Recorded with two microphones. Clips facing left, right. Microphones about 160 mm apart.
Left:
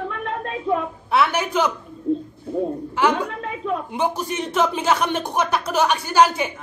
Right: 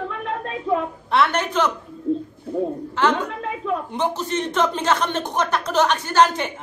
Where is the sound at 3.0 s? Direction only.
10° left (ahead or behind).